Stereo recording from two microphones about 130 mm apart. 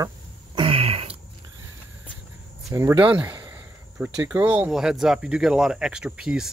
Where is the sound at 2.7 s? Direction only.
20° right (ahead or behind).